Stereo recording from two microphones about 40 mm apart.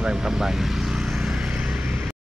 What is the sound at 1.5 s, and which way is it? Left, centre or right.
Vehicle, right.